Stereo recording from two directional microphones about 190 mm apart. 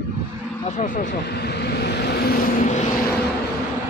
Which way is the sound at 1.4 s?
60° left (ahead or behind).